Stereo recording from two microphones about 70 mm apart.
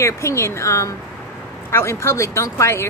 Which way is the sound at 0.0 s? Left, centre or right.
Left.